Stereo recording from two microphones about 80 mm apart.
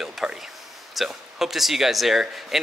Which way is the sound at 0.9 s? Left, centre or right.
Centre.